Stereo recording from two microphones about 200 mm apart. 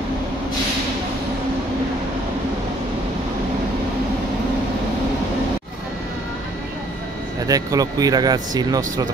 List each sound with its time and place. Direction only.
7.4 s speech: 15° right (ahead or behind)